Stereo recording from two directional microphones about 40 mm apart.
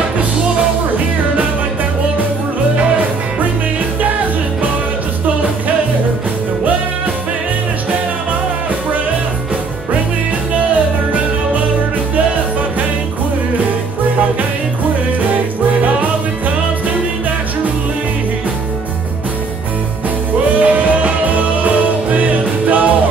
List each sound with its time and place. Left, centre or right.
20.5 s music: right